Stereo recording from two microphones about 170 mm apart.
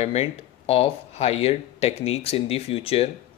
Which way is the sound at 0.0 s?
35° left (ahead or behind).